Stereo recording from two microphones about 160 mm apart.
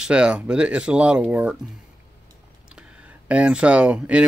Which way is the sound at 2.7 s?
5° right (ahead or behind).